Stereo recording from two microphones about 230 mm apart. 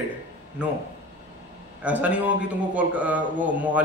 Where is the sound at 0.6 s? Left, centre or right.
Centre.